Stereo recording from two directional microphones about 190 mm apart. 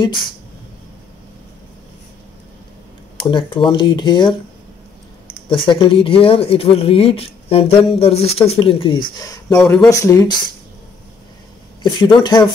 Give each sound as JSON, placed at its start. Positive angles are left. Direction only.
{"t": 3.3, "sound": "speech", "side_deg": 25}
{"t": 5.5, "sound": "speech", "side_deg": 25}
{"t": 9.6, "sound": "speech", "side_deg": 0}
{"t": 9.8, "sound": "speech", "side_deg": 15}
{"t": 11.8, "sound": "speech", "side_deg": 25}